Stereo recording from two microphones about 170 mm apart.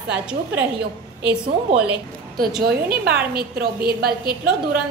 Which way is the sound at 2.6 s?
65° right (ahead or behind).